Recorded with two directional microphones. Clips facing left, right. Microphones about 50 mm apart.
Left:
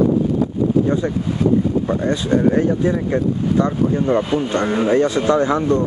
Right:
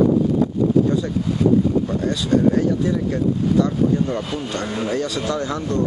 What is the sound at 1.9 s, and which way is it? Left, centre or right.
Speech, left.